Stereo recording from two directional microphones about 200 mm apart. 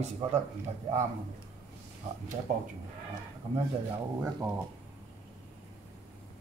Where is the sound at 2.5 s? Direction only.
40° right (ahead or behind).